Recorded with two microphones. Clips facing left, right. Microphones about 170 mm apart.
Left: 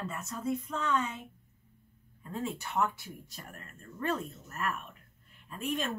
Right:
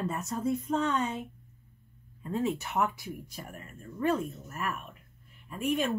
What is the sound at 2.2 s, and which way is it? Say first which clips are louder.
Speech: right 6 dB; 20° right (ahead or behind).